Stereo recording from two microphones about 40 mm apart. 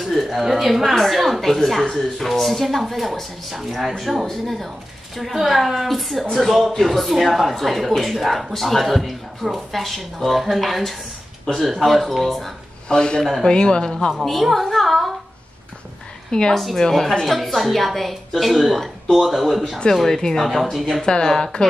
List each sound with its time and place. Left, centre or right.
0.0 s speech: centre
12.8 s a man's voice: left
13.2 s speech: centre
13.5 s speech: left
14.4 s a woman's voice: centre
16.3 s a woman's voice: centre
16.5 s speech: centre
19.9 s speech: centre